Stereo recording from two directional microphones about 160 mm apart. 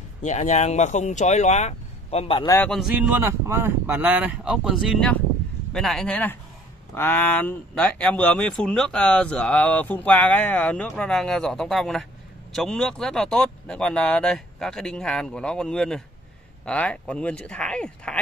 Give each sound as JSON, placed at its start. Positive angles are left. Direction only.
{"t": 0.2, "sound": "speech", "side_deg": 45}
{"t": 2.4, "sound": "a man's voice", "side_deg": 20}
{"t": 2.7, "sound": "speech", "side_deg": -5}